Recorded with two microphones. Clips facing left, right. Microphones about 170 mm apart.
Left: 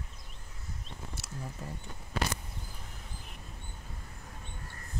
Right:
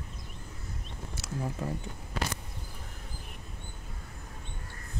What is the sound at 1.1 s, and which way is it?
Speech, 90° right.